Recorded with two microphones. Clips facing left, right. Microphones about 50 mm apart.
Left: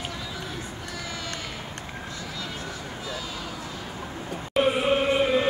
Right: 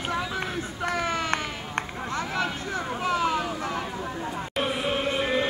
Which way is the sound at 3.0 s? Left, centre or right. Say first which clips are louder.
Right 12 dB; right.